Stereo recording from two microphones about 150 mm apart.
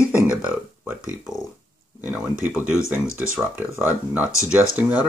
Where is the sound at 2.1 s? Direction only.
10° right (ahead or behind).